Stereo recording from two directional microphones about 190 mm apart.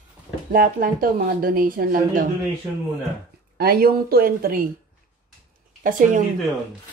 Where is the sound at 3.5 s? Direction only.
55° right (ahead or behind).